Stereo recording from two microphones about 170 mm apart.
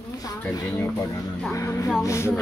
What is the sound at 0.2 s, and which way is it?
Speech, 20° left (ahead or behind).